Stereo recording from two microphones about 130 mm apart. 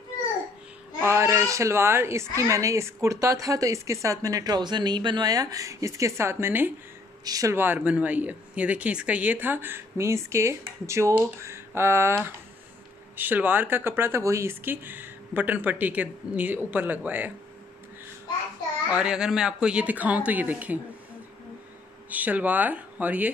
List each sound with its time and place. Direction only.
1.0 s speech: 20° right (ahead or behind)
18.9 s speech: 10° right (ahead or behind)
22.1 s speech: 10° right (ahead or behind)